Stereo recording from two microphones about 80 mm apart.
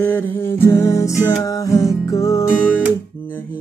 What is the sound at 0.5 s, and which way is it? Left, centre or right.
Music, left.